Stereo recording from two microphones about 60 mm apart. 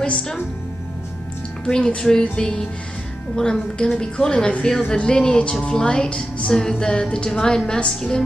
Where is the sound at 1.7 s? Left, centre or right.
Centre.